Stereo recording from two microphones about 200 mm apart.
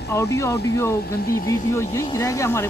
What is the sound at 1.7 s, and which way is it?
Speech, 15° left (ahead or behind).